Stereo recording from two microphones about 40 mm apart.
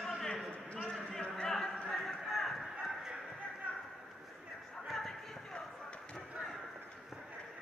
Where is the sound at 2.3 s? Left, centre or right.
Centre.